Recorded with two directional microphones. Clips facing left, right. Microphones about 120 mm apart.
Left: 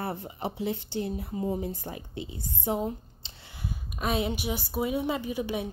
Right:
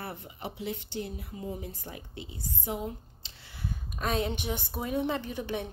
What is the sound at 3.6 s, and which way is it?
A woman's voice, 10° left (ahead or behind).